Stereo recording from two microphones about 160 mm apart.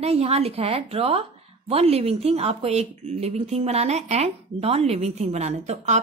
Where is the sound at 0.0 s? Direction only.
40° right (ahead or behind).